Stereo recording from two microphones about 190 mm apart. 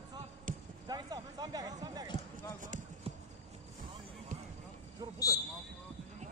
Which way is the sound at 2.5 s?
40° right (ahead or behind).